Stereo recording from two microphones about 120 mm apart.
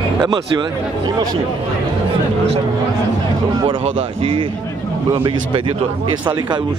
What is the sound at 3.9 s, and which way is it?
Speech, 45° right (ahead or behind).